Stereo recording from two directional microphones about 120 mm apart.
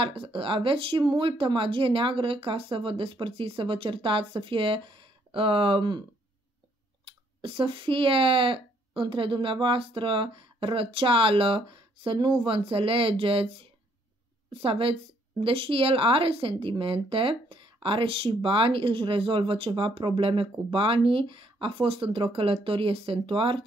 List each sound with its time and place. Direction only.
0.0 s speech: 50° right (ahead or behind)
7.1 s speech: 50° right (ahead or behind)